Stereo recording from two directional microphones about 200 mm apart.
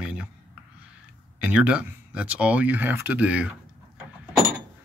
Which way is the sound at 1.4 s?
5° right (ahead or behind).